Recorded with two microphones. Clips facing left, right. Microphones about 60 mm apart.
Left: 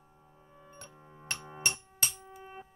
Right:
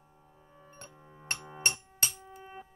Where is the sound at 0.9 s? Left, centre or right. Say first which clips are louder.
Even; centre.